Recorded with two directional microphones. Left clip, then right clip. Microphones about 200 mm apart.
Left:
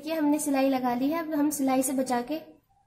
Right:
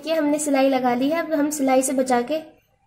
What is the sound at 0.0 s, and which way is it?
A woman's voice, 30° right (ahead or behind).